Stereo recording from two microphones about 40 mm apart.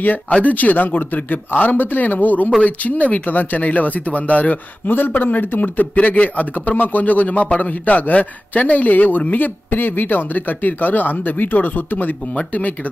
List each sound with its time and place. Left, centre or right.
0.4 s speech: left
4.8 s speech: left
6.0 s speech: left
12.4 s speech: left